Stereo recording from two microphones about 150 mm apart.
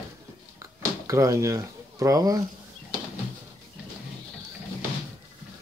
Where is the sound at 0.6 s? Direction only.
20° right (ahead or behind).